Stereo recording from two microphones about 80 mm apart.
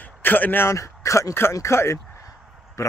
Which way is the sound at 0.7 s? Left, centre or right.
Left.